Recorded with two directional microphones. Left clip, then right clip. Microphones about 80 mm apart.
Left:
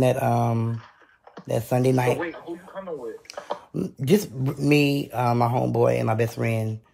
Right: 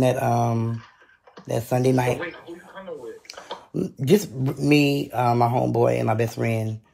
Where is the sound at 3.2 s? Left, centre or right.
Left.